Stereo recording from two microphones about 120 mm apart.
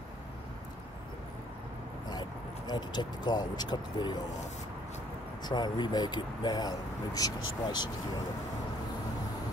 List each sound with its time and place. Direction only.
2.0 s speech: 35° left (ahead or behind)
5.4 s speech: 35° left (ahead or behind)